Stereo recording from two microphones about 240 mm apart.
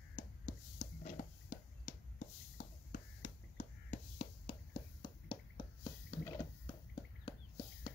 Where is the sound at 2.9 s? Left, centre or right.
Left; by 6.7 s centre.